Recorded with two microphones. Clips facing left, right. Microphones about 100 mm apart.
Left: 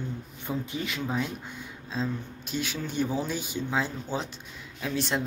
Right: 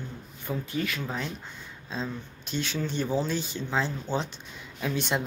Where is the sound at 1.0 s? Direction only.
5° left (ahead or behind).